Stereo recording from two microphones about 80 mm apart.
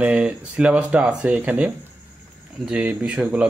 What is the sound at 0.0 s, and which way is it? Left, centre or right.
Speech, centre.